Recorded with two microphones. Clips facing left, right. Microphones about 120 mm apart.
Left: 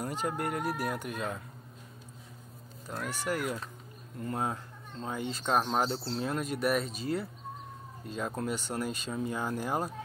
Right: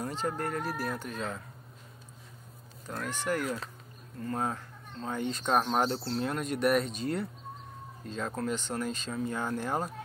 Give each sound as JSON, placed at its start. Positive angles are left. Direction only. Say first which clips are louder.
{"t": 0.0, "sound": "speech", "louder": "even", "side_deg": 10}
{"t": 2.9, "sound": "speech", "louder": "right 1 dB", "side_deg": 10}